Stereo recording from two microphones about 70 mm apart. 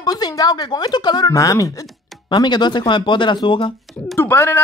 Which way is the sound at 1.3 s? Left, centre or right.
Left.